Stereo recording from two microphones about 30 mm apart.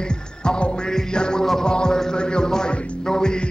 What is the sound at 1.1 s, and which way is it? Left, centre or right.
Music, left.